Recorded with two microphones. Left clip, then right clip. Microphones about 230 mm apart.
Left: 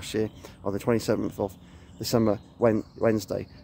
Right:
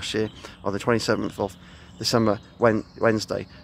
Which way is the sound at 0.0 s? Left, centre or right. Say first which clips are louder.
Right 3 dB; centre.